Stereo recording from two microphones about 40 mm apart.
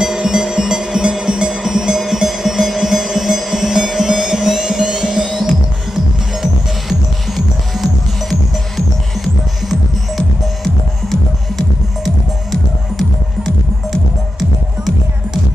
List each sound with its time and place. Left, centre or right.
0.0 s music: centre